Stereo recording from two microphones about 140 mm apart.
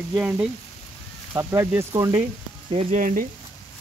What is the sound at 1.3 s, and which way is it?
Speech, 20° right (ahead or behind).